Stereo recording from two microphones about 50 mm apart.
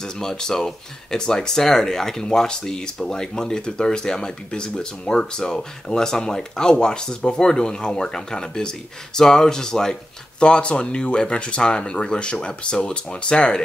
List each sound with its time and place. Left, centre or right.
0.0 s speech: centre